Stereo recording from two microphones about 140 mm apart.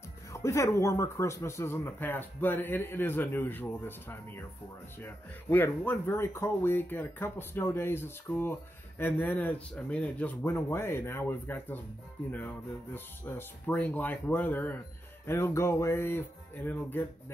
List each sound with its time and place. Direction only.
0.3 s speech: 20° left (ahead or behind)